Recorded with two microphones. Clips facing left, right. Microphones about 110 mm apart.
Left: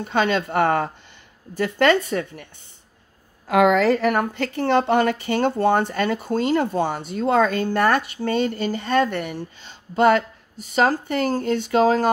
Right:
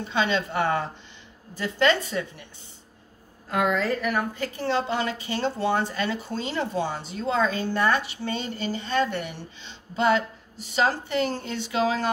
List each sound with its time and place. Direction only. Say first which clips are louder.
0.0 s a woman's voice: left 4 dB; 50° left (ahead or behind)
3.4 s a woman's voice: left 8 dB; 90° left; by 12.1 s 45° left (ahead or behind)